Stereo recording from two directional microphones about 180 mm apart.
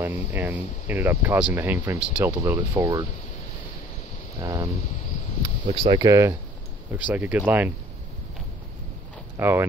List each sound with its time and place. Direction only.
0.0 s speech: 10° right (ahead or behind)
4.4 s speech: 20° right (ahead or behind)
5.7 s speech: 30° right (ahead or behind); by 7.7 s 10° right (ahead or behind)
9.4 s speech: 15° right (ahead or behind)